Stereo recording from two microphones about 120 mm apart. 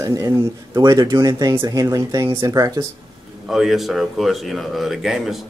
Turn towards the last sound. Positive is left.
turn(degrees=0)  # may be behind; listen again after turning